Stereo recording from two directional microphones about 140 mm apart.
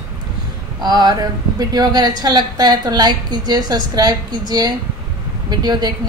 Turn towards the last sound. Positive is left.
turn(degrees=-30)  # may be behind; listen again after turning